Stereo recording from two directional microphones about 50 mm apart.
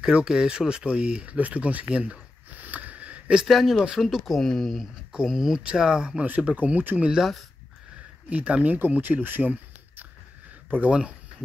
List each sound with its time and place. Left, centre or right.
0.0 s speech: centre
2.5 s a sound: right
3.4 s speech: centre
4.4 s speech: centre
5.1 s speech: centre
6.2 s speech: right
8.3 s speech: right
10.9 s speech: right